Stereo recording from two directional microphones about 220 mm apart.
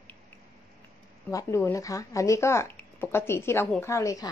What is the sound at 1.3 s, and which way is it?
Speech, 15° left (ahead or behind).